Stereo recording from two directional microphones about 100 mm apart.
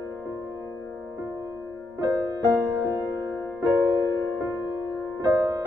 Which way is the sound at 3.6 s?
40° right (ahead or behind).